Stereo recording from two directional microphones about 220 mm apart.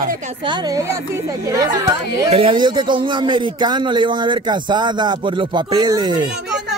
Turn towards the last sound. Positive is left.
turn(degrees=-20)  # may be behind; listen again after turning